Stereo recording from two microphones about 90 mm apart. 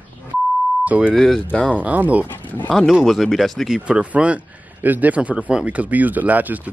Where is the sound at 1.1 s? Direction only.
5° left (ahead or behind).